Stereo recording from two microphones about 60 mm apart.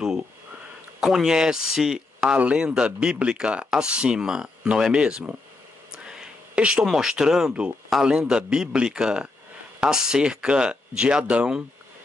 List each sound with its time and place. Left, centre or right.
1.0 s speech: centre
6.0 s a sound: centre
6.8 s speech: centre